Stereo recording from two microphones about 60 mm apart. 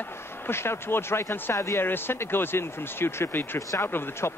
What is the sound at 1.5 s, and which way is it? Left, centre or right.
Speech, left.